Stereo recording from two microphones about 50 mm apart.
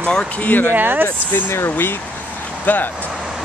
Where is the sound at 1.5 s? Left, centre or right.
Left.